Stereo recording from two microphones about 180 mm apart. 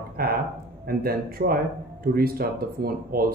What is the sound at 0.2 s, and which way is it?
Speech, 55° right (ahead or behind).